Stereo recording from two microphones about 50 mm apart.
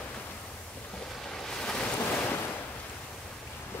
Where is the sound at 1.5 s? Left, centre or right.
Centre.